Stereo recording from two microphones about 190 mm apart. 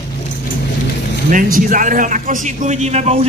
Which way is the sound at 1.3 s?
45° right (ahead or behind).